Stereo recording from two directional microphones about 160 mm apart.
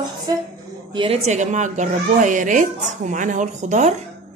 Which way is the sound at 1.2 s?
50° right (ahead or behind).